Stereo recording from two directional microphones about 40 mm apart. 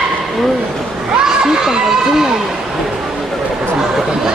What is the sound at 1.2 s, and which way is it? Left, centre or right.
Speech, centre.